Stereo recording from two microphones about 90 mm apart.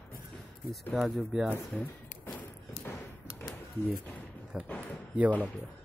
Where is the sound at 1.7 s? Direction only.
20° left (ahead or behind).